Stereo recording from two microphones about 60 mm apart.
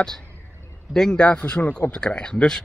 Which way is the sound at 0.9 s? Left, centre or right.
Centre.